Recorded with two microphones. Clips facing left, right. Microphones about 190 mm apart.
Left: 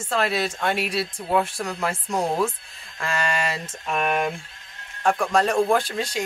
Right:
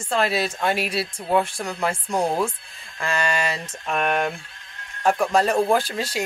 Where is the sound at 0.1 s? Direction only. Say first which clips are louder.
Right 1 dB; centre (ahead or behind).